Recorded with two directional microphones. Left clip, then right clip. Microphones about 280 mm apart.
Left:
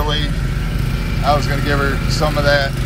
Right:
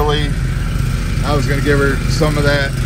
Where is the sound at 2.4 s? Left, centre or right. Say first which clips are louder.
Left 3 dB; centre.